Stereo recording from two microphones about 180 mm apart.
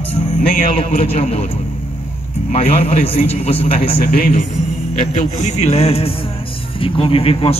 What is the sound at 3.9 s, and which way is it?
Speech, 55° left (ahead or behind).